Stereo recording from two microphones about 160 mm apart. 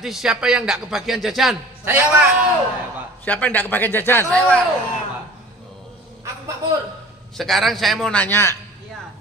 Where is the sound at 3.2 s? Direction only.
10° left (ahead or behind).